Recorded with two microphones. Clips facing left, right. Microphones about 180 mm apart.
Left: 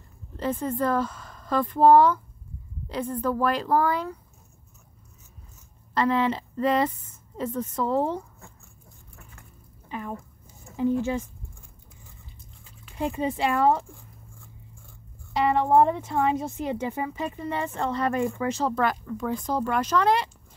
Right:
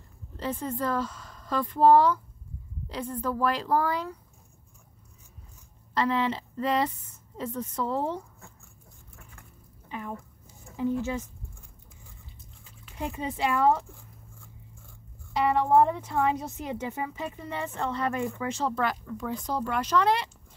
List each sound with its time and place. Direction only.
0.4 s speech: 55° left (ahead or behind)
5.9 s speech: 50° left (ahead or behind)
9.8 s a sound: 45° left (ahead or behind)
10.8 s speech: 30° left (ahead or behind)
13.0 s speech: 30° left (ahead or behind)
15.3 s speech: 30° left (ahead or behind); by 20.2 s 45° left (ahead or behind)